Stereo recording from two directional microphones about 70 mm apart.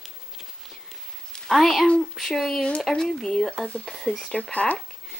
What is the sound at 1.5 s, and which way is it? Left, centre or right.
Speech, centre.